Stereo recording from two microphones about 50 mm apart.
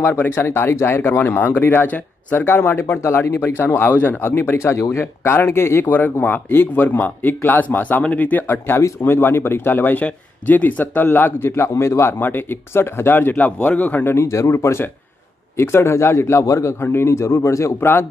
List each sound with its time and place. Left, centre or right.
0.0 s speech: left
4.6 s speech: left
5.9 s a man's voice: left
11.5 s speech: left
12.2 s a man's voice: left
14.4 s a man's voice: left
16.8 s a man's voice: left
17.7 s speech: left